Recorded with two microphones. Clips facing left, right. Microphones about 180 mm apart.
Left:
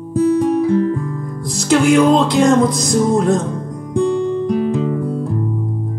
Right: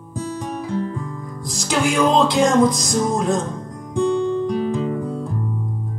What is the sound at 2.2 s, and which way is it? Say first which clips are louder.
Music: left 3 dB; 60° left (ahead or behind).